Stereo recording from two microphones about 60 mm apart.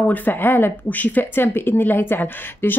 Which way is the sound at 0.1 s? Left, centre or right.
Left.